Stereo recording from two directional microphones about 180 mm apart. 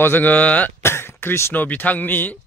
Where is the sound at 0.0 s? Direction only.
10° left (ahead or behind).